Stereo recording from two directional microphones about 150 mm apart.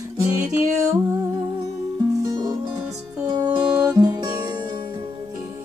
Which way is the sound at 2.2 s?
25° right (ahead or behind).